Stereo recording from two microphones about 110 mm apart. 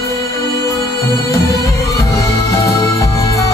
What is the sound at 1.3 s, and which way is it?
Music, 30° left (ahead or behind).